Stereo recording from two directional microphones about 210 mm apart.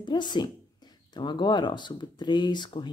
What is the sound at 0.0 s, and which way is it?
Speech, 20° left (ahead or behind).